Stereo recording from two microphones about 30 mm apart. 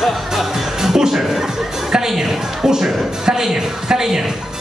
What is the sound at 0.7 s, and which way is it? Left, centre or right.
A man's voice, centre.